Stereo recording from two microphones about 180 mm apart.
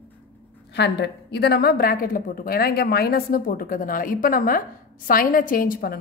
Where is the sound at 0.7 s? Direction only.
70° left (ahead or behind); by 6.0 s 55° left (ahead or behind).